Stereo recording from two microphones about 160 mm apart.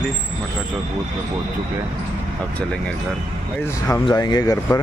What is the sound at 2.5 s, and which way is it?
Speech, 5° left (ahead or behind).